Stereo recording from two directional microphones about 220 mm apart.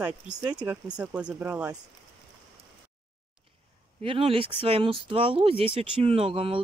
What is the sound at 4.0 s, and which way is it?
Speech, 25° right (ahead or behind).